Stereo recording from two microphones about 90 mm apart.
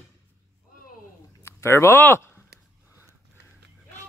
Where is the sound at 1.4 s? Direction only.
30° left (ahead or behind).